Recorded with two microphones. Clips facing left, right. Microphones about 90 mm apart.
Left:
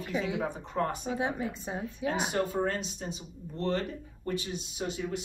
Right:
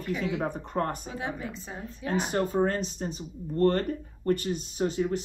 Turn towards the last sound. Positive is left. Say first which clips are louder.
# right 6 dB
turn(degrees=-40)  # may be behind; listen again after turning